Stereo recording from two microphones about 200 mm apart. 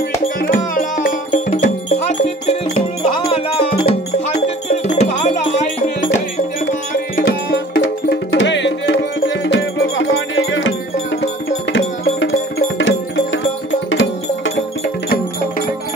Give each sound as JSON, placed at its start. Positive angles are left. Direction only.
{"t": 0.4, "sound": "music", "side_deg": 45}
{"t": 7.2, "sound": "music", "side_deg": 65}
{"t": 11.7, "sound": "music", "side_deg": 55}